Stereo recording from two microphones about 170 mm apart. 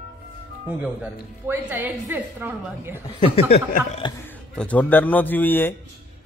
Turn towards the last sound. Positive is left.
turn(degrees=10)  # may be behind; listen again after turning